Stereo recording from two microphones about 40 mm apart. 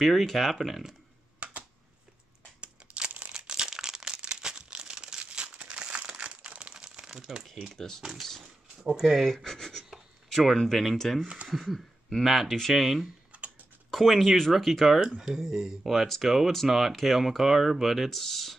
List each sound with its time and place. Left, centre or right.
0.0 s speech: centre
1.4 s computer keyboard: right
2.6 s crumpling: right
3.3 s a sound: right
4.2 s crumpling: right
7.1 s crumpling: centre
7.7 s speech: centre
9.0 s speech: centre
13.3 s a sound: right
13.9 s speech: centre
15.0 s speech: centre